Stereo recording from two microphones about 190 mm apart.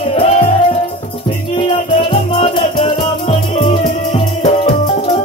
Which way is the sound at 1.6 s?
30° left (ahead or behind).